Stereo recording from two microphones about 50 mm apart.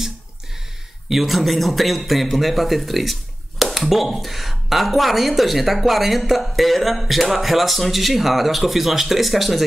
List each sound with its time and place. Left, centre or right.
1.0 s speech: centre